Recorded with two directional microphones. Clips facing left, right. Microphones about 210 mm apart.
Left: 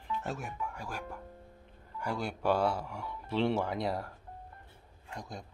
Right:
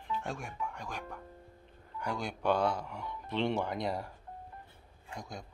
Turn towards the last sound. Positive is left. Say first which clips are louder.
# even
turn(degrees=0)  # may be behind; listen again after turning